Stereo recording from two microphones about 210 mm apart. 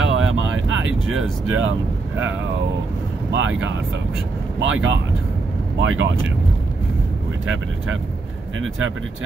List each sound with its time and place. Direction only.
0.0 s vehicle: 65° right (ahead or behind)
4.6 s speech: 65° right (ahead or behind)
8.5 s speech: 70° right (ahead or behind)